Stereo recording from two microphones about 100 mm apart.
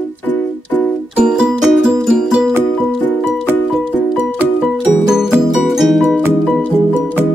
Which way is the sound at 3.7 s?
Centre (ahead or behind).